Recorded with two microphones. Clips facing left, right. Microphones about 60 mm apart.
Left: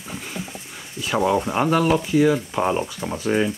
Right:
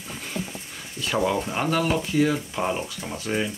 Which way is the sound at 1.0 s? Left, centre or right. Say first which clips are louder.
Left 4 dB; centre.